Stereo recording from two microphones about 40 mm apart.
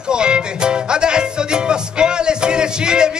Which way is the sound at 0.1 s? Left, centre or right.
Right.